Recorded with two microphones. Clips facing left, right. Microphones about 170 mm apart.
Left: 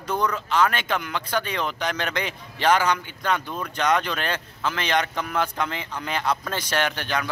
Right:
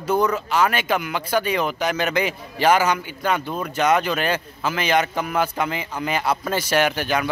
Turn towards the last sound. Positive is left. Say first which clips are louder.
# right 5 dB
turn(degrees=-10)  # may be behind; listen again after turning